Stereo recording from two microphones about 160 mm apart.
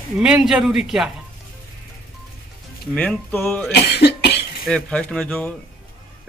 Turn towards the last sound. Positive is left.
turn(degrees=5)  # may be behind; listen again after turning